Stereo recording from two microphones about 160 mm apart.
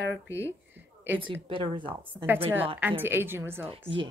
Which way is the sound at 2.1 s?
10° right (ahead or behind).